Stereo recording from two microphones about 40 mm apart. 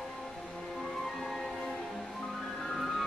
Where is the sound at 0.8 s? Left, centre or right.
Centre.